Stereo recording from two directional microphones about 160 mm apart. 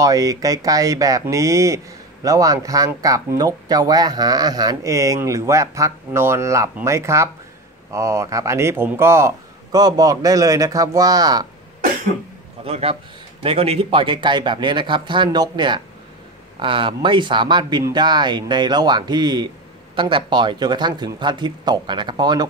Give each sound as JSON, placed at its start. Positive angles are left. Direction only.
{"t": 0.0, "sound": "speech", "side_deg": -20}
{"t": 12.6, "sound": "a man's voice", "side_deg": -40}